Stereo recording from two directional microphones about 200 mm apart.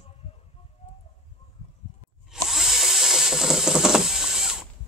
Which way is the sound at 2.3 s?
Centre (ahead or behind).